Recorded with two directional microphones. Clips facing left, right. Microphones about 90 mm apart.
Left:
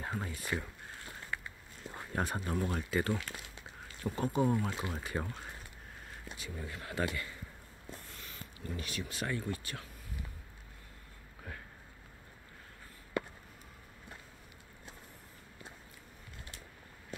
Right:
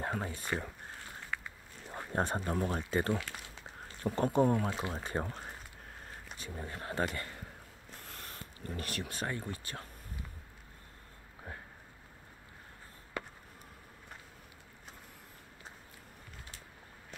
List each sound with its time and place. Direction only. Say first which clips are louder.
0.0 s speech: right 3 dB; 35° right (ahead or behind)
2.1 s speech: right 2 dB; 30° right (ahead or behind)
4.0 s speech: right 3 dB; 25° right (ahead or behind)
4.4 s speech: right 2 dB; 40° right (ahead or behind)
8.0 s a sound: right 3 dB; 60° right (ahead or behind)
8.5 s speech: right 1 dB; 45° right (ahead or behind)
9.2 s speech: left 4 dB; 30° right (ahead or behind)
11.5 s a sound: right 1 dB; 30° right (ahead or behind)